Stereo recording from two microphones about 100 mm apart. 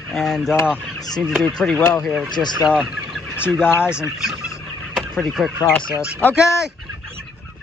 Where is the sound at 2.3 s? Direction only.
45° left (ahead or behind).